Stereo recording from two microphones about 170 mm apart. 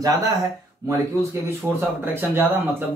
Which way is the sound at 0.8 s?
20° right (ahead or behind).